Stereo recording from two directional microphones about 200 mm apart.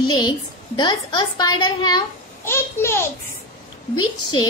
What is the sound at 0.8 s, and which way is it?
Child singing, 20° left (ahead or behind).